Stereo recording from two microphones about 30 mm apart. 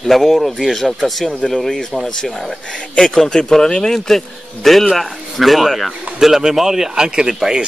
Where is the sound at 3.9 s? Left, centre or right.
Centre.